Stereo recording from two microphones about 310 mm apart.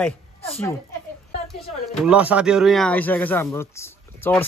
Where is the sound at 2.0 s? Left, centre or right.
Centre.